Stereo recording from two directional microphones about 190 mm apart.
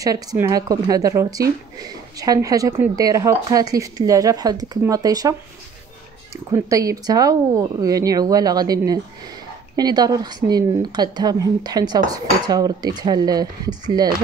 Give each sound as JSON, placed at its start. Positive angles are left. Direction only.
{"t": 0.0, "sound": "a woman's voice", "side_deg": -20}
{"t": 6.5, "sound": "a woman's voice", "side_deg": -15}